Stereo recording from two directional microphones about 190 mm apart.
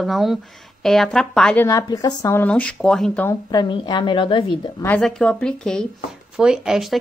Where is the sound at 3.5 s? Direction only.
20° left (ahead or behind).